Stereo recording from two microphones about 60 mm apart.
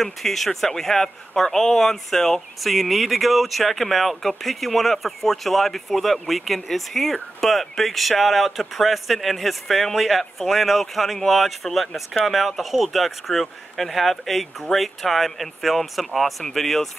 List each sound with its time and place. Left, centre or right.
0.0 s speech: centre